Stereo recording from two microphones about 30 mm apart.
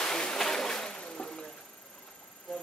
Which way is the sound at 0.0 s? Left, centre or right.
Left.